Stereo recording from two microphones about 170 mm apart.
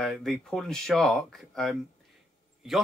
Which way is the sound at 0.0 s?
Centre (ahead or behind).